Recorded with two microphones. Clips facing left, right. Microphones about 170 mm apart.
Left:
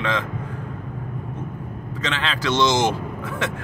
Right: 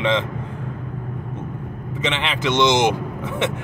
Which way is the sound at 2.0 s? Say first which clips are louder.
Right 2 dB; 20° right (ahead or behind).